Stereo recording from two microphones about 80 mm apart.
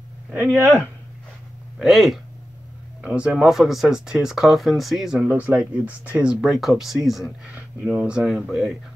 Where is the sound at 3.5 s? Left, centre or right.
Centre.